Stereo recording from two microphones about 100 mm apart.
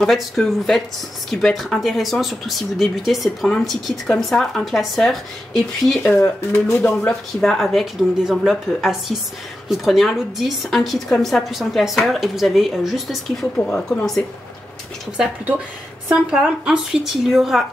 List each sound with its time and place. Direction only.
0.0 s a woman's voice: 5° left (ahead or behind)
6.0 s speech: 20° left (ahead or behind)
7.3 s a woman's voice: 5° left (ahead or behind)
13.6 s speech: 15° left (ahead or behind)
13.8 s a woman's voice: 5° left (ahead or behind)
16.3 s a woman's voice: 5° right (ahead or behind)